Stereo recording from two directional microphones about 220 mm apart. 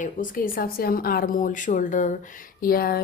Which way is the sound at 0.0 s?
40° left (ahead or behind).